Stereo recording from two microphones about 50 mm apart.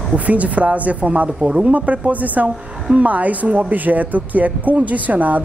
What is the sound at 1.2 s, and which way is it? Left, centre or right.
Speech, centre.